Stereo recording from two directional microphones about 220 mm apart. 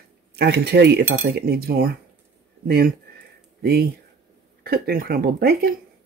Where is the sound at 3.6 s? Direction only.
45° right (ahead or behind).